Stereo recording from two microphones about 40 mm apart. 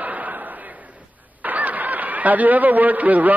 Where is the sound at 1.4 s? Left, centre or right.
Right.